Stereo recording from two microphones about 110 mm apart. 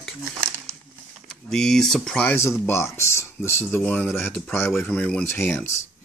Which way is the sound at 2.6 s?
25° left (ahead or behind).